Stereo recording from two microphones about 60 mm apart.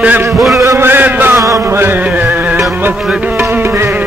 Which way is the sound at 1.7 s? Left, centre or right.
Right.